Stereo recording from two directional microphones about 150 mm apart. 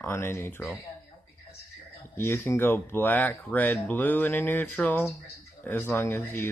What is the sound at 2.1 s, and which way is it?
Speech, 15° left (ahead or behind).